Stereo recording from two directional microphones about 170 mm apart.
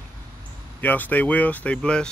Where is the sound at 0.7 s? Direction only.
10° left (ahead or behind).